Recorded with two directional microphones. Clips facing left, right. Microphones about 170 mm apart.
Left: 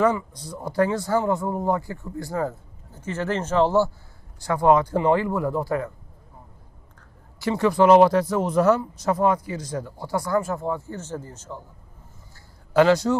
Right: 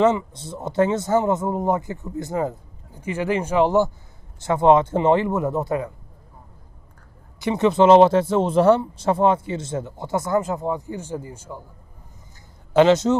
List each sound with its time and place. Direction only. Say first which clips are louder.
0.0 s speech: right 3 dB; 25° right (ahead or behind)
7.3 s speech: right 2 dB; 20° right (ahead or behind)
12.7 s speech: right 2 dB; 20° right (ahead or behind)